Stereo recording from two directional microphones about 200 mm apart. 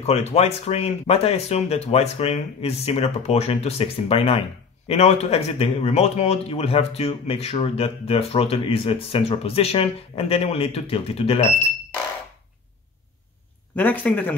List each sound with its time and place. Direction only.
0.0 s a man's voice: 30° left (ahead or behind)
13.7 s a man's voice: 10° left (ahead or behind)